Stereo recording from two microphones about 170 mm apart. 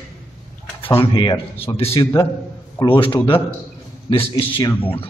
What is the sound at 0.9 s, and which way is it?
A man's voice, 30° left (ahead or behind).